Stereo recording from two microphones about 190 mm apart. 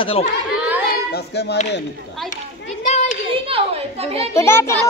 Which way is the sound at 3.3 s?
30° right (ahead or behind).